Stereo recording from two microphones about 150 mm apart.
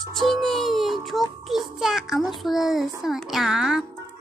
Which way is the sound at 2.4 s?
Centre (ahead or behind).